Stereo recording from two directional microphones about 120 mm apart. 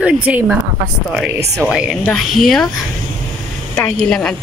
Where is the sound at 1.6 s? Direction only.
5° right (ahead or behind).